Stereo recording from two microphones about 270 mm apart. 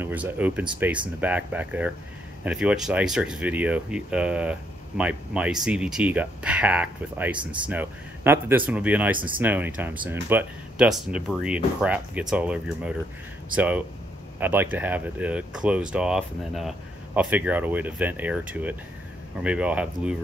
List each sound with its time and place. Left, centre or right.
0.0 s speech: centre